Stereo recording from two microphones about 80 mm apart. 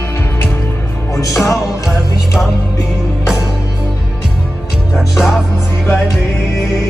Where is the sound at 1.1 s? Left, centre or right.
Left.